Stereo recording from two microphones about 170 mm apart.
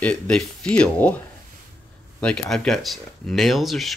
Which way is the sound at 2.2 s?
5° left (ahead or behind).